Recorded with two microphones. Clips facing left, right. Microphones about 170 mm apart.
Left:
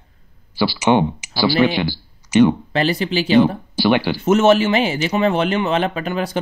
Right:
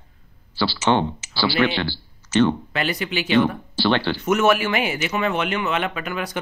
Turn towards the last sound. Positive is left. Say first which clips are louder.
# left 5 dB
turn(degrees=30)  # may be behind; listen again after turning